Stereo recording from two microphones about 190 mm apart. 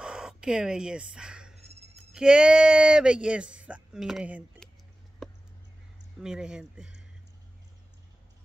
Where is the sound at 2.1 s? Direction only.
5° right (ahead or behind).